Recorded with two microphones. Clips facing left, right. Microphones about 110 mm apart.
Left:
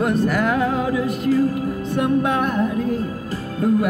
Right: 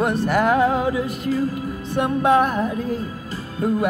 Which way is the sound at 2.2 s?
30° right (ahead or behind).